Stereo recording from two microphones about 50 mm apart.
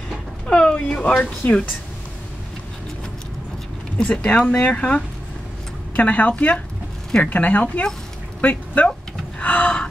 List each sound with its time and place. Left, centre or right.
0.5 s a sound: centre
1.4 s speech: left
4.0 s speech: left
9.4 s gasp: left